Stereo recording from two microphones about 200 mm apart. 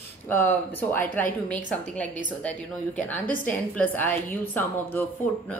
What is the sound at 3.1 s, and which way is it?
Speech, 45° left (ahead or behind).